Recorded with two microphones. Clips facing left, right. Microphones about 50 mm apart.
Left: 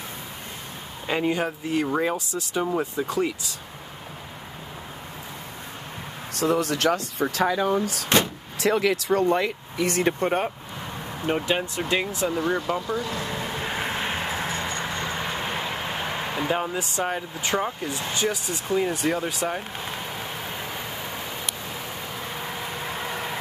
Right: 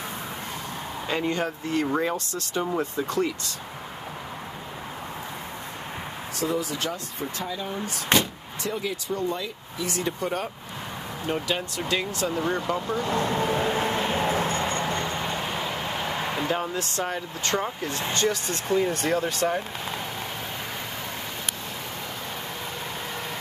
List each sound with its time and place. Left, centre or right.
1.0 s speech: centre
6.3 s speech: left
11.2 s speech: left; by 12.8 s centre
12.8 s speech: right
13.7 s vehicle: centre
16.5 s speech: centre
22.8 s vehicle: centre